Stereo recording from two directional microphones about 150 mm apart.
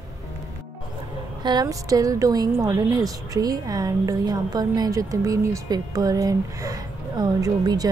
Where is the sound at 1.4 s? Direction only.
25° right (ahead or behind).